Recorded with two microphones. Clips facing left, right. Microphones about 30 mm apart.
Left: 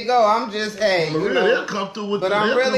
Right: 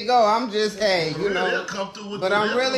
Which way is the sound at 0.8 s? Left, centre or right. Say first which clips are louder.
Left 5 dB; left.